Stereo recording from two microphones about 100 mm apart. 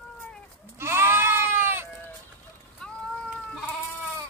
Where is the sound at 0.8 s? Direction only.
25° right (ahead or behind).